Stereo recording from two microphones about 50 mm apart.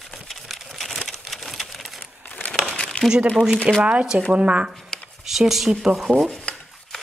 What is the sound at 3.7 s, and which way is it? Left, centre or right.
Speech, right.